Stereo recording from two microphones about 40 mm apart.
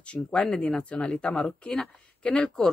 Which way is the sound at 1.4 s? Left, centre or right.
Centre.